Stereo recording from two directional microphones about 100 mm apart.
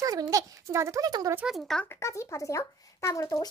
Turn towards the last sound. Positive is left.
turn(degrees=35)  # may be behind; listen again after turning